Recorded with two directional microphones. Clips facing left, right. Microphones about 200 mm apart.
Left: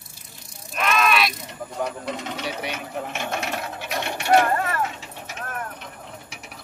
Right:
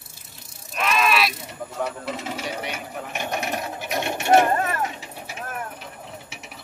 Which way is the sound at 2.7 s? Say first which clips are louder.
Left 2 dB; 10° right (ahead or behind).